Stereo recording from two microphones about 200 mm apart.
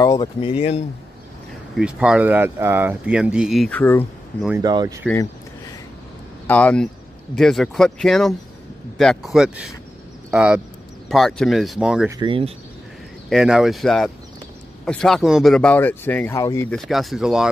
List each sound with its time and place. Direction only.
0.0 s speech: 20° left (ahead or behind)
1.8 s speech: 5° right (ahead or behind)
4.6 s speech: 20° right (ahead or behind)
6.4 s speech: 5° left (ahead or behind)
12.1 s speech: 25° right (ahead or behind)
13.3 s speech: centre (ahead or behind); by 16.7 s 15° left (ahead or behind)
16.7 s speech: centre (ahead or behind)